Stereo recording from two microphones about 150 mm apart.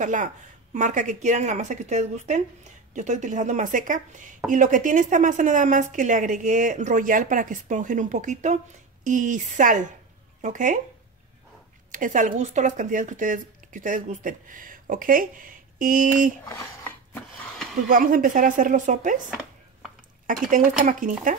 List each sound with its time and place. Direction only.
0.0 s speech: 55° right (ahead or behind)
11.9 s speech: 60° right (ahead or behind)
17.8 s speech: 70° right (ahead or behind)
20.8 s speech: 65° right (ahead or behind)